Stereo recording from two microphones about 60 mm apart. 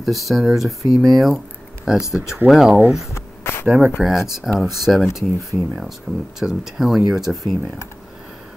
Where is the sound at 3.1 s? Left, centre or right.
Left.